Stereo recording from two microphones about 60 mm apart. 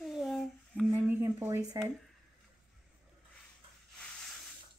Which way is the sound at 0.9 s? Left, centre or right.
Right.